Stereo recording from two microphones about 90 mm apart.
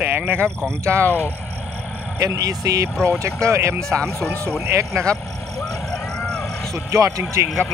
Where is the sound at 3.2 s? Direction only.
35° right (ahead or behind).